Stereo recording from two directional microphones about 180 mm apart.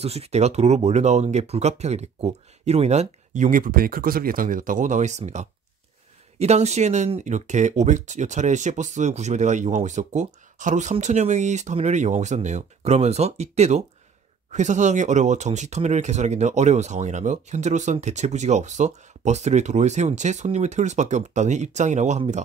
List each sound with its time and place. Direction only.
0.0 s speech: 35° right (ahead or behind)